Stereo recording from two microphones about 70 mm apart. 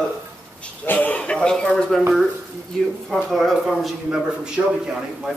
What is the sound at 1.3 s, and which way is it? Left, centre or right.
Speech, centre.